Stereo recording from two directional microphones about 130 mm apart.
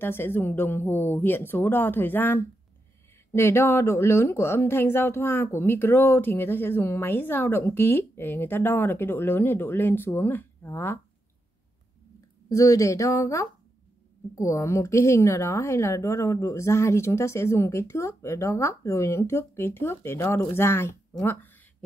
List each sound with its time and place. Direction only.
0.0 s speech: 15° left (ahead or behind)
12.4 s a woman's voice: 25° left (ahead or behind)